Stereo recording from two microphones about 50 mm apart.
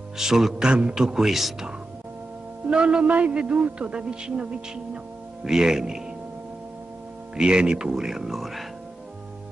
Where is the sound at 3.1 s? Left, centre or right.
Right; by 6.1 s centre.